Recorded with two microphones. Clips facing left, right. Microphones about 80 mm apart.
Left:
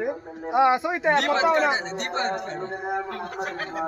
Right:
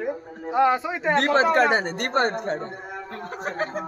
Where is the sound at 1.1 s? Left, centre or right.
Right.